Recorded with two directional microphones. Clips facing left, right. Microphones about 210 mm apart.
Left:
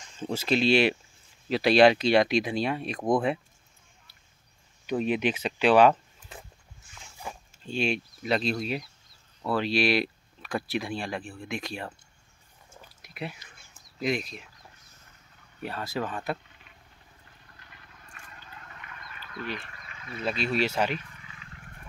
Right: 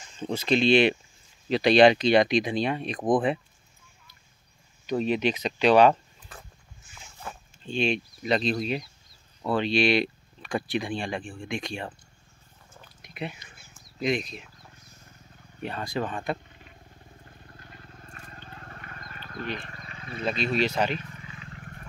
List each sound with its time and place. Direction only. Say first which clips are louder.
0.2 s speech: right 2 dB; 5° left (ahead or behind)
4.8 s speech: right 1 dB; 10° left (ahead or behind)
7.2 s speech: left 1 dB; 10° left (ahead or behind)
13.0 s a sound: right 2 dB; 5° left (ahead or behind)
15.6 s speech: right 2 dB; 5° left (ahead or behind)
17.2 s vehicle: right 7 dB; 40° right (ahead or behind)
18.4 s a sound: right 3 dB; 40° right (ahead or behind)
19.1 s sheep: right 2 dB; 40° right (ahead or behind)
20.2 s speech: right 1 dB; 5° left (ahead or behind)
21.0 s wild animals: right 7 dB; 35° right (ahead or behind)